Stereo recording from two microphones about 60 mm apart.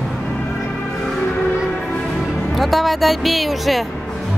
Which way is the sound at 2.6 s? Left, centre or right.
Centre.